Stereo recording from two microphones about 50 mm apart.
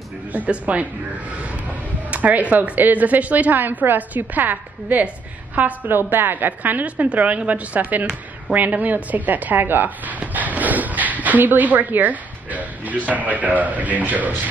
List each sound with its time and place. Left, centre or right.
0.3 s speech: right
2.0 s a woman's voice: right
5.9 s a woman's voice: right